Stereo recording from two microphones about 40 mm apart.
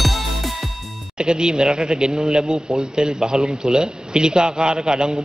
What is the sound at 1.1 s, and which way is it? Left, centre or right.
Speech, centre.